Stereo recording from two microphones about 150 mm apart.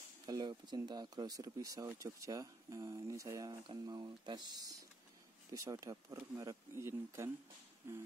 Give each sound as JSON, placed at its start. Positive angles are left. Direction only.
{"t": 0.3, "sound": "speech", "side_deg": -30}